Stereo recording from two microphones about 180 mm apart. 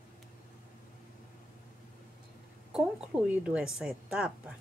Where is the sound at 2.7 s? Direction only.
5° right (ahead or behind).